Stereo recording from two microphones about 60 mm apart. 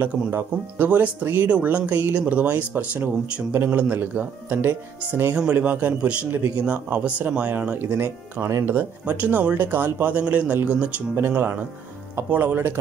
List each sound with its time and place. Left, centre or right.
0.0 s speech: right
0.8 s speech: right
5.5 s speech: right
11.1 s speech: right